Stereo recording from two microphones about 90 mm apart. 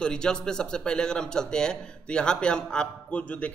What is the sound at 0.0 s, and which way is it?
A man's voice, 10° left (ahead or behind).